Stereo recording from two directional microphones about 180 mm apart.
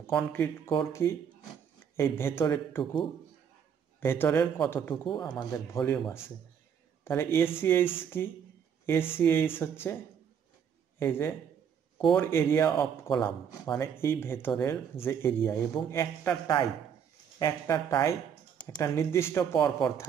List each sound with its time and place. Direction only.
0.1 s speech: 10° left (ahead or behind)
4.0 s speech: 15° left (ahead or behind)
5.4 s speech: 20° left (ahead or behind)
5.9 s speech: centre (ahead or behind)
7.1 s speech: 15° left (ahead or behind)
11.0 s speech: 15° left (ahead or behind)